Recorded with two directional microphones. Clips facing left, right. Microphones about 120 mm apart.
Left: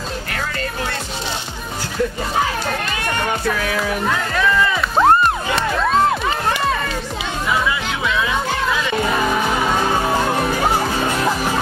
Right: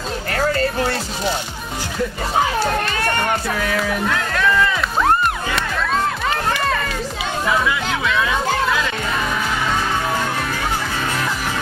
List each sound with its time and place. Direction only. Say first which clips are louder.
0.3 s music: right 10 dB; 40° right (ahead or behind)
4.9 s music: left 5 dB; 30° left (ahead or behind)
10.0 s music: left 4 dB; 25° left (ahead or behind)